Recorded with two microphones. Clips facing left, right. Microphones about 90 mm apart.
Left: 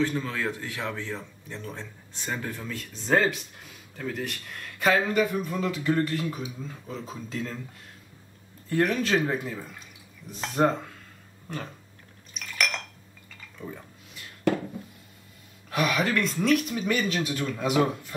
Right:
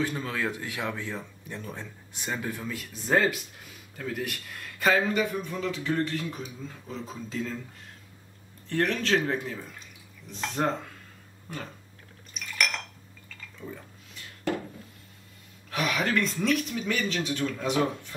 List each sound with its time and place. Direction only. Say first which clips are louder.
0.0 s a man's voice: left 2 dB; 15° right (ahead or behind)
8.6 s speech: left 2 dB; 5° left (ahead or behind)
12.4 s a sound: left 1 dB; centre (ahead or behind)
15.9 s speech: right 2 dB; 5° left (ahead or behind)